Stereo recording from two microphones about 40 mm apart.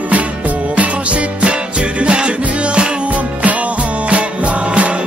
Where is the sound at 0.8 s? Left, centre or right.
Right.